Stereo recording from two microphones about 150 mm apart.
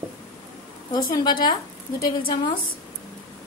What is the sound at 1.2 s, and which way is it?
Speech, 30° left (ahead or behind).